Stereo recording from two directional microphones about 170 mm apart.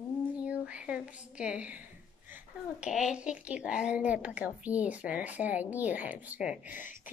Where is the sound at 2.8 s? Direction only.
5° right (ahead or behind).